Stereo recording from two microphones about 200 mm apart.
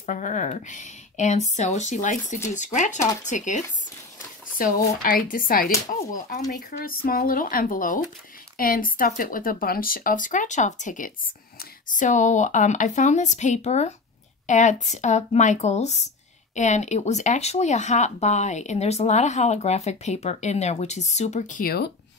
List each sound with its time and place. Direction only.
0.0 s speech: 40° left (ahead or behind)
6.8 s speech: 45° left (ahead or behind)